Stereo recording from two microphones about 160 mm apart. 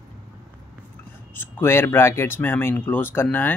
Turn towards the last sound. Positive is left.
turn(degrees=10)  # may be behind; listen again after turning